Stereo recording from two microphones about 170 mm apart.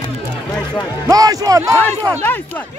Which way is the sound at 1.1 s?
20° right (ahead or behind).